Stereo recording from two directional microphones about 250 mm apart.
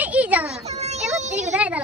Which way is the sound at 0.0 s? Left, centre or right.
Centre.